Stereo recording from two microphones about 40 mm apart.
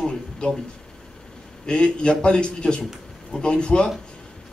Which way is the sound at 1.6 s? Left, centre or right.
Left.